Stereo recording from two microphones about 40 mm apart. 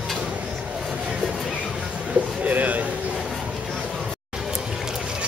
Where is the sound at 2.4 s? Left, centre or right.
Right.